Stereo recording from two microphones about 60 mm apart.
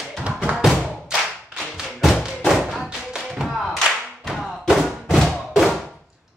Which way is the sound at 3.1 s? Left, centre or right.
Centre.